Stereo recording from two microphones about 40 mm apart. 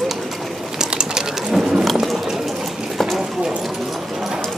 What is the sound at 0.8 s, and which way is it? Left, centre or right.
Pigeon, centre.